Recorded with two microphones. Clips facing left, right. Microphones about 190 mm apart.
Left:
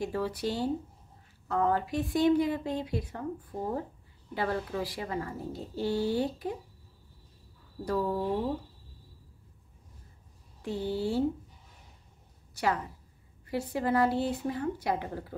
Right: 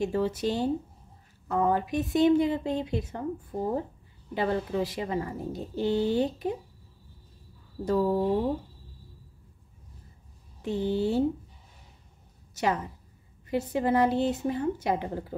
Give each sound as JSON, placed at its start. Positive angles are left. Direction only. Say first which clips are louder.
{"t": 0.0, "sound": "speech", "louder": "right 4 dB", "side_deg": -25}
{"t": 7.8, "sound": "speech", "louder": "right 5 dB", "side_deg": -20}
{"t": 10.6, "sound": "speech", "louder": "right 4 dB", "side_deg": -20}
{"t": 12.5, "sound": "speech", "louder": "right 2 dB", "side_deg": -20}